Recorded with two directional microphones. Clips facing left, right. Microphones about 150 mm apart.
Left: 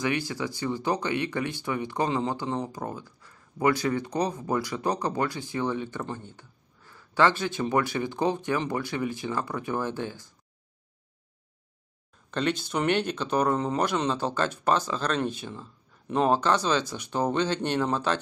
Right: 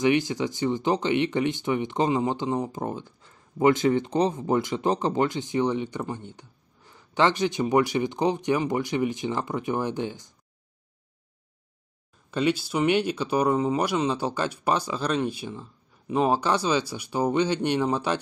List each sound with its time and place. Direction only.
0.0 s speech: 20° right (ahead or behind)
12.3 s speech: 10° right (ahead or behind)